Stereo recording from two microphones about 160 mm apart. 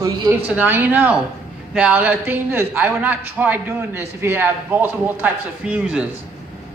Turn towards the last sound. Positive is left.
turn(degrees=-10)  # may be behind; listen again after turning